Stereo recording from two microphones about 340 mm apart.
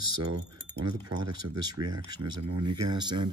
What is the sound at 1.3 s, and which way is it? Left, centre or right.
Speech, right.